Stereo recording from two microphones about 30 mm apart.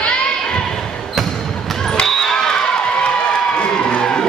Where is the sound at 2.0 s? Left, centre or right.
Centre.